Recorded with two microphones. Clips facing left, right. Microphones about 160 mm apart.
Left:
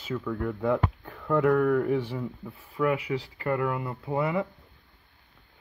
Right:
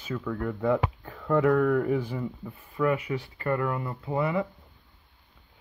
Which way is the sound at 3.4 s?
15° left (ahead or behind).